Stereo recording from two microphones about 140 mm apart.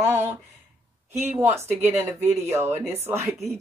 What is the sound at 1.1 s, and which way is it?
Speech, 15° right (ahead or behind).